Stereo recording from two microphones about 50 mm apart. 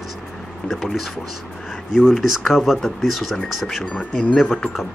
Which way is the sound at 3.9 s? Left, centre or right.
Left.